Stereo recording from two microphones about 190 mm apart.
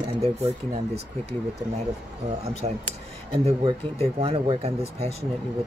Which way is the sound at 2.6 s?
30° right (ahead or behind).